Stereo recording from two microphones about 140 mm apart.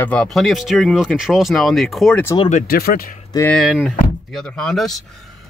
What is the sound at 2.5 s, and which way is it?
Speech, 90° left.